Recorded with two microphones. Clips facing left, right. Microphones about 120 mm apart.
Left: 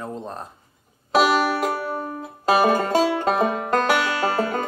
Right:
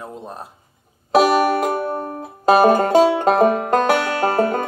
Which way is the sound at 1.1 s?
50° right (ahead or behind).